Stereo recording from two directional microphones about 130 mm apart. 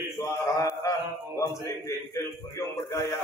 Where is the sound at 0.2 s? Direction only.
25° left (ahead or behind).